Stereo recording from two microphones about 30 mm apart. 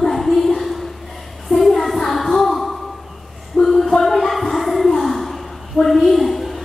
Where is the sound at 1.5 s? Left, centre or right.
Centre.